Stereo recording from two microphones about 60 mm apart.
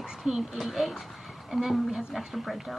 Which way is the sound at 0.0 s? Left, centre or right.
Centre.